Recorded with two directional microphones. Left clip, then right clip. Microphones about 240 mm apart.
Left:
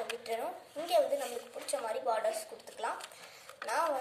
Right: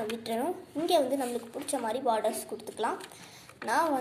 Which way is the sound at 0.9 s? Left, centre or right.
Right.